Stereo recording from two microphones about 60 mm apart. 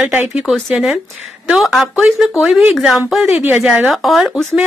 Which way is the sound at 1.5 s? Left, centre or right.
Centre.